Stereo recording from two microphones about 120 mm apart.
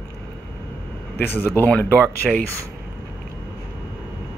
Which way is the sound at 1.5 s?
15° left (ahead or behind).